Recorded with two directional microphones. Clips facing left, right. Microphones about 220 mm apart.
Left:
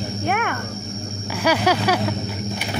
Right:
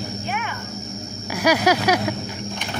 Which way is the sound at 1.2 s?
10° right (ahead or behind).